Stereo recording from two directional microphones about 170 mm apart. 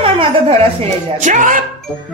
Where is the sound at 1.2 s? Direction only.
50° right (ahead or behind).